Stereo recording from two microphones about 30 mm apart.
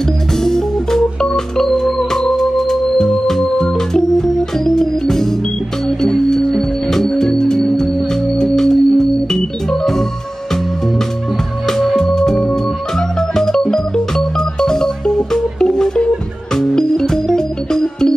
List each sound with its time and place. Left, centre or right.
0.4 s organ: centre
1.7 s music: centre
3.7 s organ: centre
7.1 s music: centre
11.6 s music: centre